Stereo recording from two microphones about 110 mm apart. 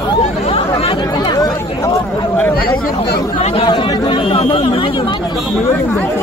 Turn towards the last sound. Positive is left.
turn(degrees=55)  # may be behind; listen again after turning